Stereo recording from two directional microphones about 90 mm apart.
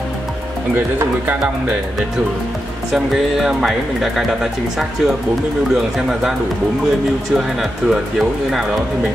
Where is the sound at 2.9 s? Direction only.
5° right (ahead or behind).